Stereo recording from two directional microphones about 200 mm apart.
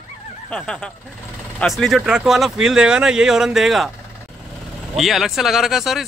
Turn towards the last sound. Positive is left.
turn(degrees=0)  # may be behind; listen again after turning